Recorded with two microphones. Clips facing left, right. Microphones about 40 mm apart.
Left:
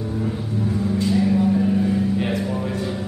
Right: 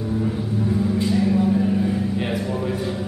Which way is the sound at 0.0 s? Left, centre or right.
Centre.